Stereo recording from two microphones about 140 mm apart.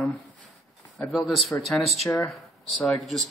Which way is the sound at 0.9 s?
Centre (ahead or behind).